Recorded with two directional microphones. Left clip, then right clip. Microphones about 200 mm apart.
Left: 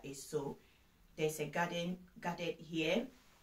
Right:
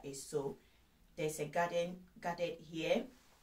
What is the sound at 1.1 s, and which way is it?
A woman's voice, 15° right (ahead or behind).